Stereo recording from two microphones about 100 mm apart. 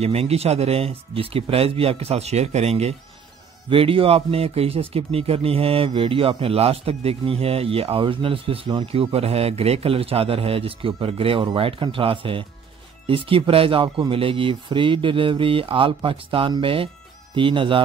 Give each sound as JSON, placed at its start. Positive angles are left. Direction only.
{"t": 0.0, "sound": "speech", "side_deg": -90}
{"t": 3.7, "sound": "a man's voice", "side_deg": -65}